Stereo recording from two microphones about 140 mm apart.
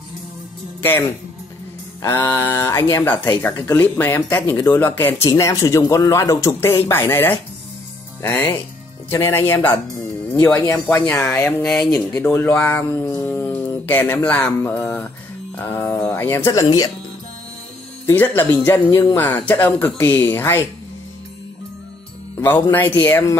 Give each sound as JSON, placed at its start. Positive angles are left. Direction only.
{"t": 2.0, "sound": "speech", "side_deg": 20}
{"t": 10.4, "sound": "speech", "side_deg": 20}
{"t": 18.0, "sound": "speech", "side_deg": 15}
{"t": 19.1, "sound": "speech", "side_deg": 10}
{"t": 22.4, "sound": "speech", "side_deg": 15}